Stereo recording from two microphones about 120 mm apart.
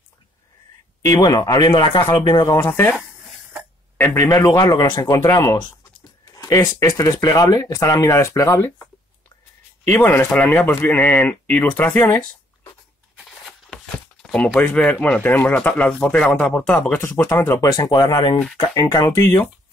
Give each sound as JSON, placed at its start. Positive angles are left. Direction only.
{"t": 1.0, "sound": "speech", "side_deg": 25}
{"t": 4.0, "sound": "speech", "side_deg": 20}
{"t": 5.1, "sound": "speech", "side_deg": 25}
{"t": 6.2, "sound": "a sound", "side_deg": 25}
{"t": 6.6, "sound": "speech", "side_deg": 35}
{"t": 9.8, "sound": "speech", "side_deg": 20}
{"t": 13.2, "sound": "a sound", "side_deg": 0}
{"t": 14.6, "sound": "speech", "side_deg": 10}
{"t": 19.0, "sound": "speech", "side_deg": 20}